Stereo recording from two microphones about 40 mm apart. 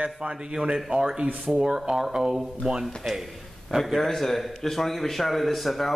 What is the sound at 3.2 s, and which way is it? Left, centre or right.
A man's voice, centre.